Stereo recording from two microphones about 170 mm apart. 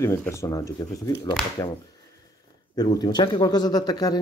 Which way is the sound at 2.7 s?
25° left (ahead or behind).